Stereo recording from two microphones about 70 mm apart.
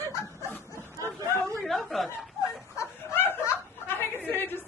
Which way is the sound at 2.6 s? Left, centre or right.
Left.